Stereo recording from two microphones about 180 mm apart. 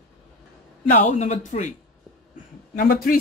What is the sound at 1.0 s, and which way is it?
Speech, 40° left (ahead or behind).